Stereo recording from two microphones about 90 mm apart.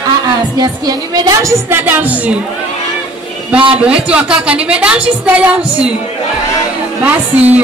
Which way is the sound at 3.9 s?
15° right (ahead or behind).